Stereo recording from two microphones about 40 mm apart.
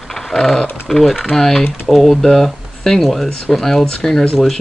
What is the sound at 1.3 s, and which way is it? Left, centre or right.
Speech, centre.